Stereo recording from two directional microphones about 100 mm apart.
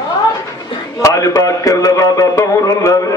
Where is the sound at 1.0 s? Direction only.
35° left (ahead or behind).